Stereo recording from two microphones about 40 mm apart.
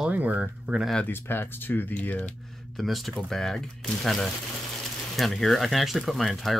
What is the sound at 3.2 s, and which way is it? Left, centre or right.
Speech, centre.